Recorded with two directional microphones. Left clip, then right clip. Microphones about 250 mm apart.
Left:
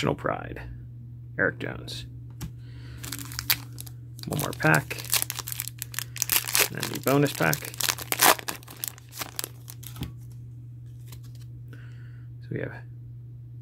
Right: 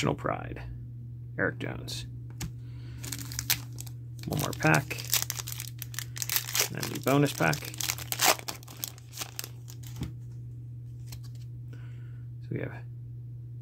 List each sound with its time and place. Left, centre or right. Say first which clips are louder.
0.0 s speech: left 3 dB; centre
3.0 s crushing: left 2 dB; centre
4.3 s crumpling: left 3 dB; centre
12.4 s speech: left 3 dB; centre